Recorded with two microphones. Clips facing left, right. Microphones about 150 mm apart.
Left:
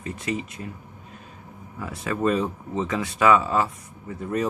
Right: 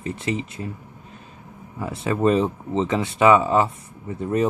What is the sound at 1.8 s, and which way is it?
Speech, 25° right (ahead or behind).